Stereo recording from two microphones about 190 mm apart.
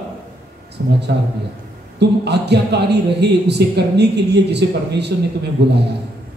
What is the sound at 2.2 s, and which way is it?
Speech, 60° right (ahead or behind).